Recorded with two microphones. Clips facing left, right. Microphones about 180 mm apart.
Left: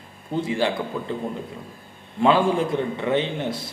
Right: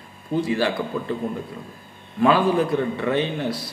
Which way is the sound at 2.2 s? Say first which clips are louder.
Right 1 dB; 25° left (ahead or behind).